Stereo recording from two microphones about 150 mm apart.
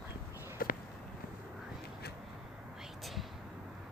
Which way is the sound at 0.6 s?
75° left (ahead or behind).